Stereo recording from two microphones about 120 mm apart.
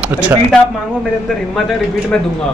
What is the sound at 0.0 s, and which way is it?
Speech, 10° right (ahead or behind).